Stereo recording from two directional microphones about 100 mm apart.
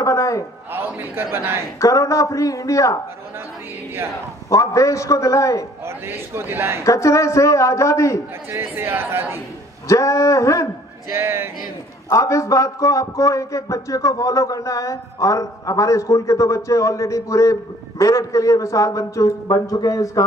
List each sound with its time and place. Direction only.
0.0 s a sound: 30° left (ahead or behind)
0.7 s a man's voice: 20° right (ahead or behind)
1.8 s a man's voice: 30° left (ahead or behind)
4.5 s a man's voice: 30° left (ahead or behind)
5.9 s a man's voice: 25° right (ahead or behind)
6.8 s a man's voice: 30° left (ahead or behind)
8.5 s a man's voice: 25° right (ahead or behind)
9.8 s a man's voice: 30° left (ahead or behind)
11.1 s a man's voice: 25° right (ahead or behind)
12.1 s a man's voice: 30° left (ahead or behind)